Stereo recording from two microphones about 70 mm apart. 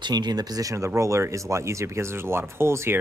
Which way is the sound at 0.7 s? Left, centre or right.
Right.